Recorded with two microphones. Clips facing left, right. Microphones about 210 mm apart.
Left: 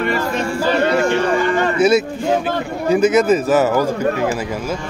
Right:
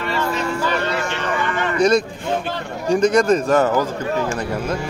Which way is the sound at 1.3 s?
35° left (ahead or behind).